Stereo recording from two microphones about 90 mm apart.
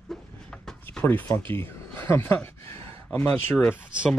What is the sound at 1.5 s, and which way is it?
Speech, 25° left (ahead or behind).